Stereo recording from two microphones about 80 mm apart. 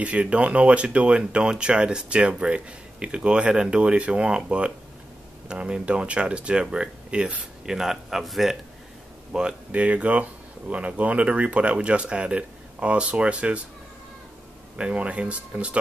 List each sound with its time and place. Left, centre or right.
0.0 s speech: centre
14.8 s speech: centre